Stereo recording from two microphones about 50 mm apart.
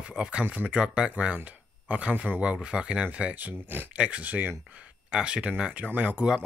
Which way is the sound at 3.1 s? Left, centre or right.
Right.